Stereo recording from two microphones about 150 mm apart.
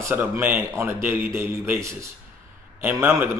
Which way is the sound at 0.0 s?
15° right (ahead or behind).